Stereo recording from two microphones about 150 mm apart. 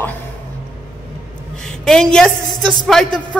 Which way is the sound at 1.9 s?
5° left (ahead or behind).